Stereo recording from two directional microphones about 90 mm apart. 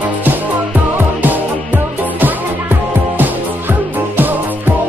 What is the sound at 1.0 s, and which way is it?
Music, 20° right (ahead or behind).